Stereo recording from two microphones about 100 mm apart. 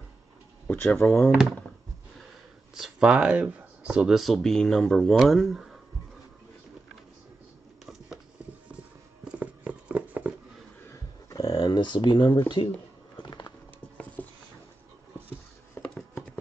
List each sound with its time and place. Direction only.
0.7 s speech: 20° left (ahead or behind)
2.7 s speech: 5° right (ahead or behind)
9.2 s horse: 15° right (ahead or behind)
10.9 s a sound: 35° left (ahead or behind); by 12.6 s 55° left (ahead or behind)
13.2 s horse: 45° left (ahead or behind)
14.2 s patter: 20° left (ahead or behind)
15.8 s a sound: 10° left (ahead or behind)